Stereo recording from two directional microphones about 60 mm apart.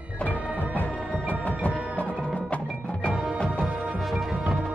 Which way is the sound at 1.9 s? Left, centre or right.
Centre.